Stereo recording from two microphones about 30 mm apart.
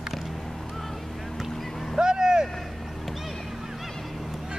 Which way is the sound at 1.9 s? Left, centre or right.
Right.